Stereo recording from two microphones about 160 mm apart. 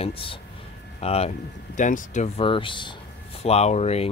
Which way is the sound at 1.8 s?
55° left (ahead or behind).